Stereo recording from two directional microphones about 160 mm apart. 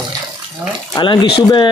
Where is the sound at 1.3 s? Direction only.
30° left (ahead or behind).